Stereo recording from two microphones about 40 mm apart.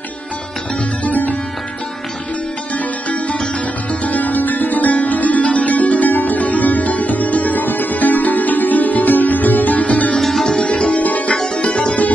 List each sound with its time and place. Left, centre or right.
1.0 s music: left
4.0 s music: left
10.4 s music: centre
11.0 s tabla: left
11.4 s music: left